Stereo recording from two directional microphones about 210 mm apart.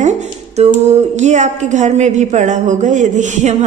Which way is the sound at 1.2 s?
35° right (ahead or behind).